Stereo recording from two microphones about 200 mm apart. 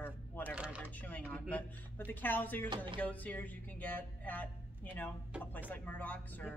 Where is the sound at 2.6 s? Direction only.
25° right (ahead or behind).